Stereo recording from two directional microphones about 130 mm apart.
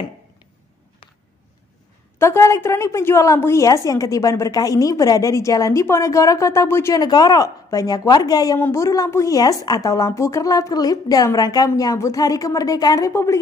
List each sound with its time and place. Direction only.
2.1 s a woman's voice: 20° left (ahead or behind)
8.5 s a woman's voice: 20° left (ahead or behind)